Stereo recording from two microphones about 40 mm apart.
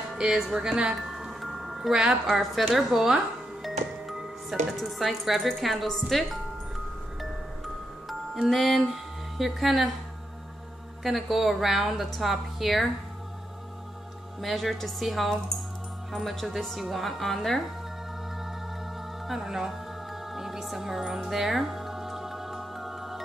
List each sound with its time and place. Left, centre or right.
0.2 s speech: centre
1.1 s glockenspiel: centre
2.0 s speech: centre
7.2 s glockenspiel: centre
8.5 s speech: centre
11.1 s a woman's voice: centre
14.4 s a woman's voice: centre
19.2 s speech: centre
20.3 s music: centre